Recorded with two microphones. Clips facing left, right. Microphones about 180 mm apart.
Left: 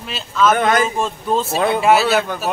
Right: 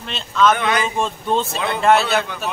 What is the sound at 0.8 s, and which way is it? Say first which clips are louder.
Speech: left 2 dB; centre (ahead or behind).